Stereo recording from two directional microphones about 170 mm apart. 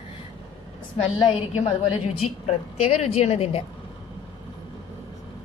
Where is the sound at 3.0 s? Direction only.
40° left (ahead or behind).